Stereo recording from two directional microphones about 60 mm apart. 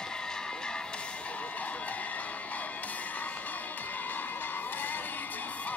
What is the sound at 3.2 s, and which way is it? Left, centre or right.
Music, left.